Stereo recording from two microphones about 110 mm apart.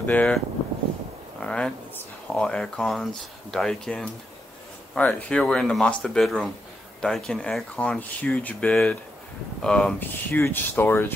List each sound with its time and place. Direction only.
0.0 s speech: 15° left (ahead or behind)
1.4 s speech: 10° left (ahead or behind)